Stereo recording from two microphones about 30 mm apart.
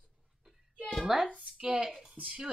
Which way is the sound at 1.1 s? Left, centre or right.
Centre.